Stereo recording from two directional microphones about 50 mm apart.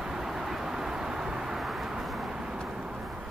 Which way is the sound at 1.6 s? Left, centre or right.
Centre.